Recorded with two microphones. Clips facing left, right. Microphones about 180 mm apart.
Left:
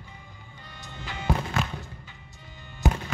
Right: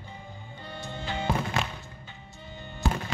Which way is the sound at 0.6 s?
30° right (ahead or behind).